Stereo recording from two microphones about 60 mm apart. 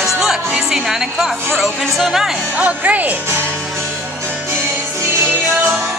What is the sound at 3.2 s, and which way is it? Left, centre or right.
Speech, right.